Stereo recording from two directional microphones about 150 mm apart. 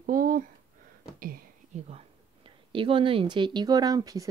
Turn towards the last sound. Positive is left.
turn(degrees=-25)  # may be behind; listen again after turning